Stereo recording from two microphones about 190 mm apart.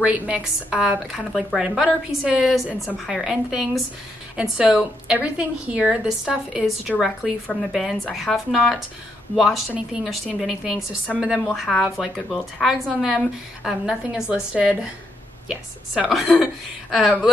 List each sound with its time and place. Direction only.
0.0 s a woman's voice: 5° right (ahead or behind)